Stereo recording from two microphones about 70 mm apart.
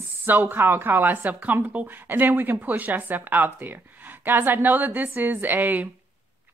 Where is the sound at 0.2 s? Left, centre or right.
Right.